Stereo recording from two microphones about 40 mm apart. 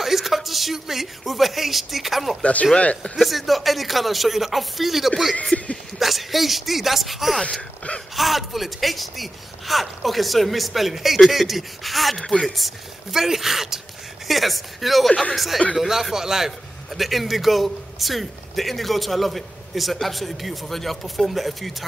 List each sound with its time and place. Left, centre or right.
0.0 s speech: centre
2.4 s speech: left
3.2 s a man's voice: centre
5.5 s speech: left
5.9 s a man's voice: centre